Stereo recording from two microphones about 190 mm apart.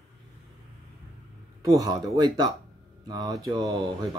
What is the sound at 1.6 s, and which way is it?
Speech, 20° right (ahead or behind).